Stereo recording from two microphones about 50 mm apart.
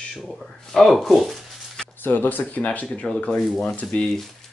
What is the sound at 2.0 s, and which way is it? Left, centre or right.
Speech, left.